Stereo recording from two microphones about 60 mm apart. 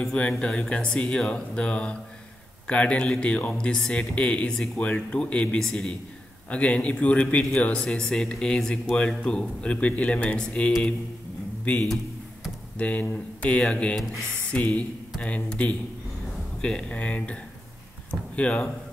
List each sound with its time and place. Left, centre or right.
0.0 s speech: centre